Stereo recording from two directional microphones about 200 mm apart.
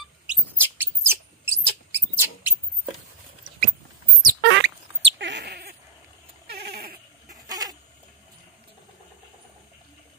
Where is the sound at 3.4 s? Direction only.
30° right (ahead or behind).